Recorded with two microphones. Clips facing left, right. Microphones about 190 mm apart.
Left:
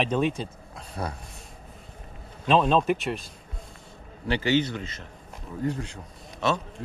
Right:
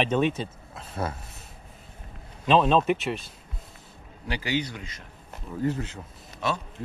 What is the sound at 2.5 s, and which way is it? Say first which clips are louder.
Speech: right 1 dB; centre (ahead or behind).